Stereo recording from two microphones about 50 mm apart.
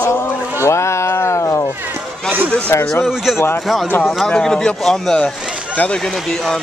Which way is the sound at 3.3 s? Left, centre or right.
Left.